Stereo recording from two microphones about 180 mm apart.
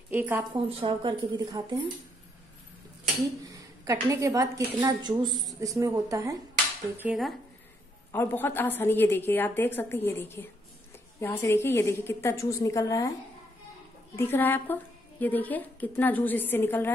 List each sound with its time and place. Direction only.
0.1 s a woman's voice: 10° right (ahead or behind)
0.5 s a woman's voice: 30° right (ahead or behind)
3.4 s a woman's voice: 15° right (ahead or behind)
7.0 s speech: 5° right (ahead or behind)
8.1 s a woman's voice: 10° left (ahead or behind)
14.1 s a woman's voice: 10° left (ahead or behind)